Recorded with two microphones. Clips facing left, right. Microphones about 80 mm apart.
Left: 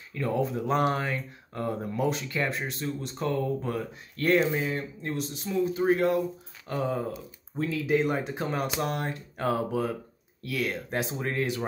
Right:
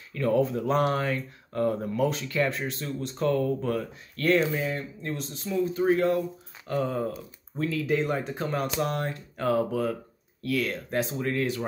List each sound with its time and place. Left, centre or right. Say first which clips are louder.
0.1 s speech: right 4 dB; centre